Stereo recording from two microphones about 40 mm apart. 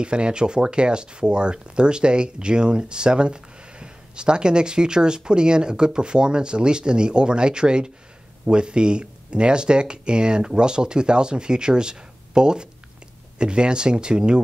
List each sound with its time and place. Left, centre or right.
0.0 s speech: right